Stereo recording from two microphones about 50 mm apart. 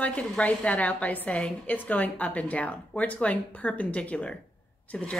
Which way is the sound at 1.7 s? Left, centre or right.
Left.